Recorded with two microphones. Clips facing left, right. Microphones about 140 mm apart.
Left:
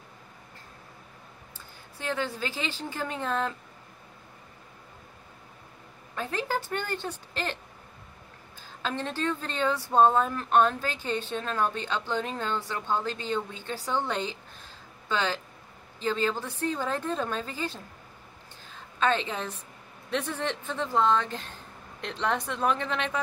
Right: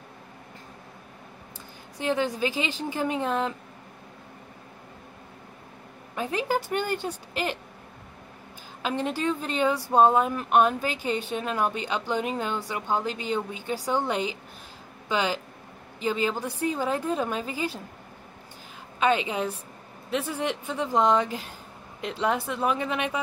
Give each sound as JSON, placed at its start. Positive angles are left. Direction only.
{"t": 2.0, "sound": "speech", "side_deg": -15}
{"t": 6.1, "sound": "speech", "side_deg": -15}
{"t": 8.8, "sound": "speech", "side_deg": -15}
{"t": 18.9, "sound": "speech", "side_deg": -10}